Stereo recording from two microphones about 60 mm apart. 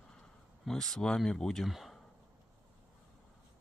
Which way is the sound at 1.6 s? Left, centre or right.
Centre.